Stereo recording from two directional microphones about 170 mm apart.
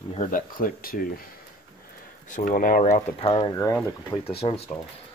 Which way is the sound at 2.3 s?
50° left (ahead or behind).